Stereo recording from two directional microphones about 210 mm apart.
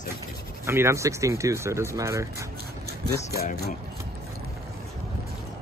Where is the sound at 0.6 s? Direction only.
15° right (ahead or behind).